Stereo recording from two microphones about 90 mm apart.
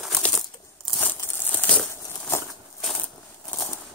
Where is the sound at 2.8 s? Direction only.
5° left (ahead or behind).